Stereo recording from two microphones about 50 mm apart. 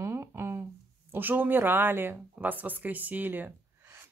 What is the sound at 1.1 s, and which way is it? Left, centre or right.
Speech, right.